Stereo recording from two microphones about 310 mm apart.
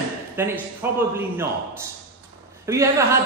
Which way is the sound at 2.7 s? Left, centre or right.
Centre.